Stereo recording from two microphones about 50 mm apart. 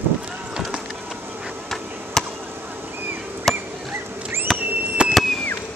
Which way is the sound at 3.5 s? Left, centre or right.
Centre.